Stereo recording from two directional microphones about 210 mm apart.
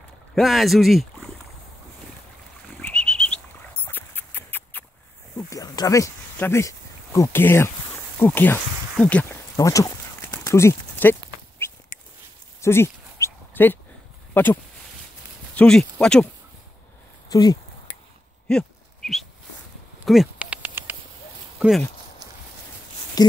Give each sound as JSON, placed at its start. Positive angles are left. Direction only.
{"t": 0.3, "sound": "speech", "side_deg": 0}
{"t": 2.8, "sound": "pig", "side_deg": 5}
{"t": 3.8, "sound": "a sound", "side_deg": 10}
{"t": 5.5, "sound": "speech", "side_deg": 15}
{"t": 8.2, "sound": "a sound", "side_deg": 10}
{"t": 14.3, "sound": "speech", "side_deg": 10}
{"t": 17.3, "sound": "speech", "side_deg": 20}
{"t": 18.5, "sound": "a sound", "side_deg": 5}
{"t": 21.5, "sound": "speech", "side_deg": 0}
{"t": 23.2, "sound": "speech", "side_deg": 20}